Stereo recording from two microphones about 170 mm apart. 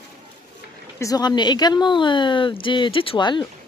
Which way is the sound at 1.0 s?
25° left (ahead or behind).